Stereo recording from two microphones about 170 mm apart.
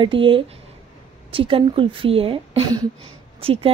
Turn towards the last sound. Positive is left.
turn(degrees=-35)  # may be behind; listen again after turning